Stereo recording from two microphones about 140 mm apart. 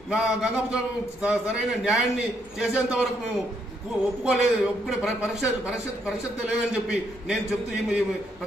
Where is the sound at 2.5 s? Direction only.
5° right (ahead or behind).